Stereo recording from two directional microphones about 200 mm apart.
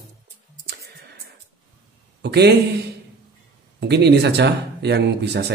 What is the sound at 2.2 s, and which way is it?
Speech, 55° right (ahead or behind).